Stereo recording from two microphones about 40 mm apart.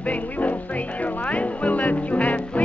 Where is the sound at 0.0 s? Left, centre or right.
Left.